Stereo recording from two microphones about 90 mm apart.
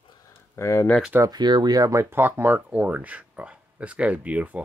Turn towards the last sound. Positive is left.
turn(degrees=-15)  # may be behind; listen again after turning